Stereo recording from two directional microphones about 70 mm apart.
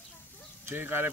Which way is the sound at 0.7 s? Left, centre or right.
Right.